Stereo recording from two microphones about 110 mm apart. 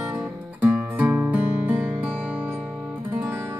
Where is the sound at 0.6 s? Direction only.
10° right (ahead or behind).